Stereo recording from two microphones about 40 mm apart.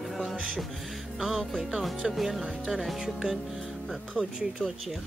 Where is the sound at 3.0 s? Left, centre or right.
Centre.